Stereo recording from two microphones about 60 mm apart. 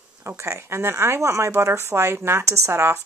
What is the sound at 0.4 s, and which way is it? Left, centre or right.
Speech, right.